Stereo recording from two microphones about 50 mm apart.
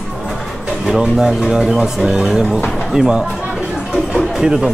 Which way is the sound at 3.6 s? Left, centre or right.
Centre.